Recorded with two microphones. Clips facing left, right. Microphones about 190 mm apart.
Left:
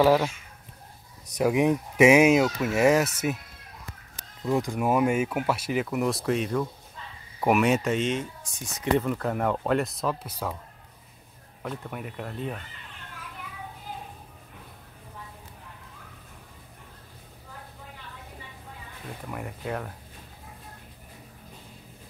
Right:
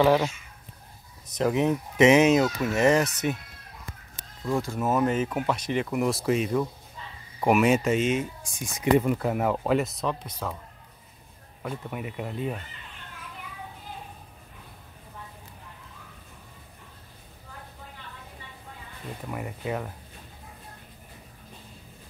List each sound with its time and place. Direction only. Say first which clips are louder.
0.0 s speech: left 1 dB; centre (ahead or behind)
1.3 s speech: left 1 dB; 10° left (ahead or behind)
4.5 s speech: left 2 dB; 15° left (ahead or behind)
11.6 s speech: right 1 dB; 5° right (ahead or behind)
19.2 s speech: right 2 dB; 5° right (ahead or behind)